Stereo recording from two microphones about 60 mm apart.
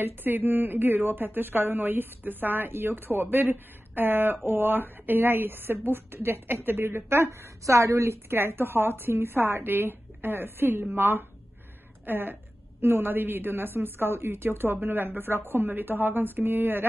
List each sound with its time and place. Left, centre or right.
0.0 s a woman's voice: right
7.6 s speech: right